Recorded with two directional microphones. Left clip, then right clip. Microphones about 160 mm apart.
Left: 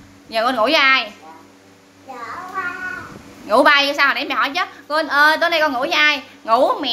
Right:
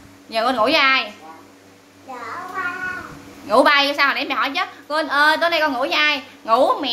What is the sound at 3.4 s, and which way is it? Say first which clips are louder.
A woman's voice: left 1 dB; 15° left (ahead or behind).